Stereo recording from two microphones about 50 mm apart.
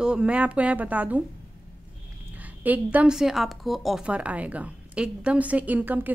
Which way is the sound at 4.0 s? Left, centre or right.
Right.